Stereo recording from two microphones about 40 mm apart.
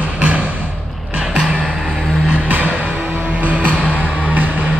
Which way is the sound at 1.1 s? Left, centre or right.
Right.